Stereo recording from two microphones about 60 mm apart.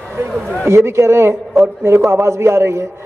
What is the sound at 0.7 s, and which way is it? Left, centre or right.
A man's voice, right.